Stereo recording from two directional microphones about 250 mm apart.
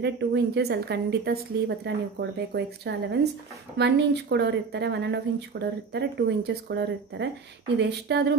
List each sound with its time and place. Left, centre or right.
0.0 s speech: right